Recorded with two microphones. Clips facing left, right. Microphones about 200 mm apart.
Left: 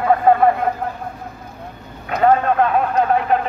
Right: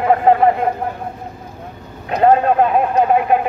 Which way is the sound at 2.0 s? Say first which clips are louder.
Right 2 dB; 25° right (ahead or behind).